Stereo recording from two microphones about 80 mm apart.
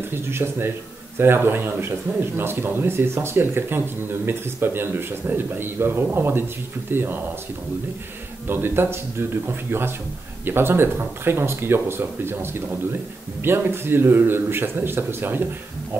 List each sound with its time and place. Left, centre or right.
0.3 s a man's voice: right
8.5 s a man's voice: right